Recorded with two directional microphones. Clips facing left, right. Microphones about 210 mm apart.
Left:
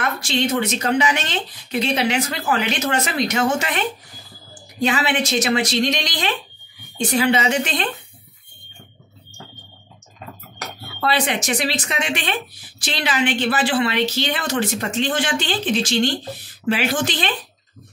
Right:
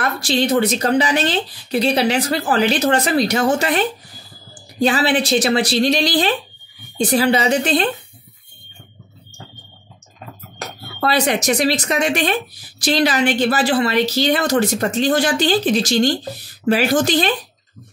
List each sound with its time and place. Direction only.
0.0 s speech: 35° right (ahead or behind)
11.0 s speech: 40° right (ahead or behind)